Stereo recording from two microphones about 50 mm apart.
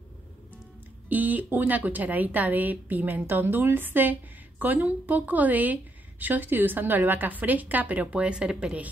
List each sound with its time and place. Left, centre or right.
1.0 s speech: right; by 8.7 s centre